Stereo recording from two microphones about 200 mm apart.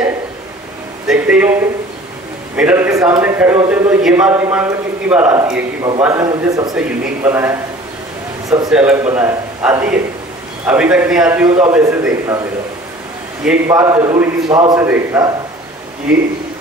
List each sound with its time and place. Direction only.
1.0 s a sound: 5° right (ahead or behind)
2.5 s a man's voice: 5° right (ahead or behind)
8.6 s a man's voice: 5° right (ahead or behind)
13.5 s a man's voice: 15° right (ahead or behind)